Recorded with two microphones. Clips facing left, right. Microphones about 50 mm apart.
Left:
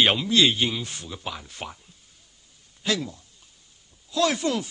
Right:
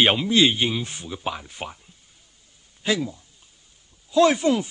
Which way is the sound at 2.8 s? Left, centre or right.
Centre.